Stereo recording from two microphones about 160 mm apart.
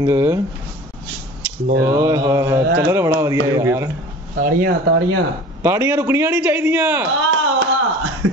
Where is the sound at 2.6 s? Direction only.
85° right.